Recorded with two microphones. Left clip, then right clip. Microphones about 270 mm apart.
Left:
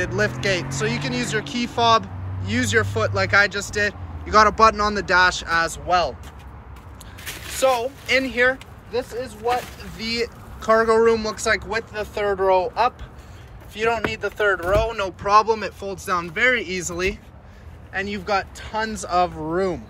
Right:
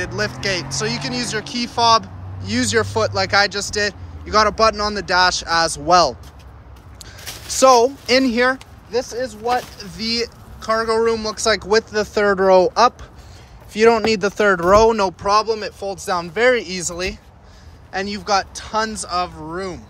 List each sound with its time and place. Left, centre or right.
0.0 s speech: centre
7.6 s speech: right
10.0 s speech: centre
10.6 s speech: centre